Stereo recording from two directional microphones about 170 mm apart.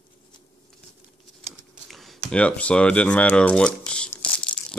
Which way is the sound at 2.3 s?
10° left (ahead or behind).